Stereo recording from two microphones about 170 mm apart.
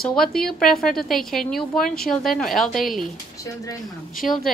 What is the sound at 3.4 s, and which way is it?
Speech, 20° left (ahead or behind).